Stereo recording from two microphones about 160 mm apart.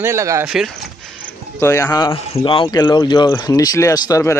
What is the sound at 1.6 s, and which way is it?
Speech, 15° left (ahead or behind).